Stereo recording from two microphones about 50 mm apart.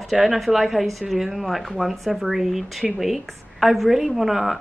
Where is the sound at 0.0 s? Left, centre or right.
Centre.